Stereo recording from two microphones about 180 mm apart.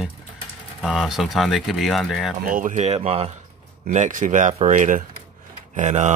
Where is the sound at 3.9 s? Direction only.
45° right (ahead or behind).